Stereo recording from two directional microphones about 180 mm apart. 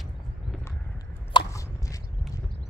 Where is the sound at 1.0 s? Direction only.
20° left (ahead or behind).